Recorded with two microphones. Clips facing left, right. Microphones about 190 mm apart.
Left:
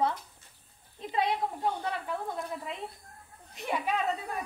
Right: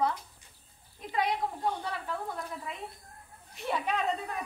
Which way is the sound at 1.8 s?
20° left (ahead or behind).